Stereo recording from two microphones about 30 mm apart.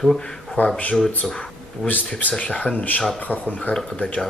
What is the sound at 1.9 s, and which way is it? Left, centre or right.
Speech, left.